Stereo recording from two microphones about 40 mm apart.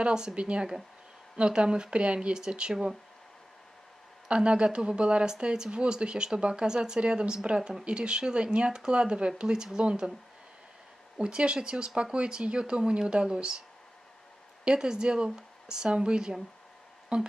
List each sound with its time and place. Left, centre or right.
0.0 s speech: right
4.3 s speech: right
11.1 s speech: right
14.8 s speech: centre